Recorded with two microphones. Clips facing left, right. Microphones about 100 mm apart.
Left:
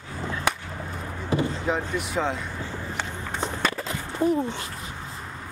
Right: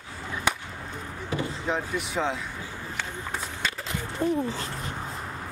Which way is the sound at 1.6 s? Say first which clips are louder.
Left 2 dB; centre (ahead or behind).